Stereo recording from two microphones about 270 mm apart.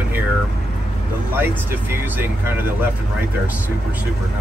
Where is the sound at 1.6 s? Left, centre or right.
Centre.